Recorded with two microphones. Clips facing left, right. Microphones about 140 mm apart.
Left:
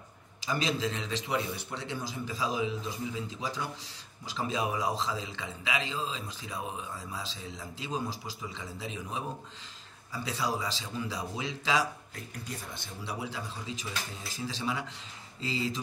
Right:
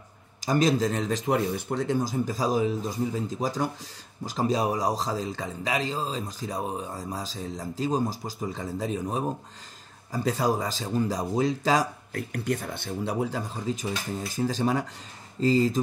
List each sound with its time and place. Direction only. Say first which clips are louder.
0.4 s speech: right 8 dB; 45° right (ahead or behind)
12.2 s speech: right 14 dB; 60° right (ahead or behind); by 15.8 s 45° right (ahead or behind)